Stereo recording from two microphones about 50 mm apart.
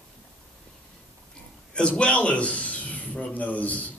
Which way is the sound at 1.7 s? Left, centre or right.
Centre.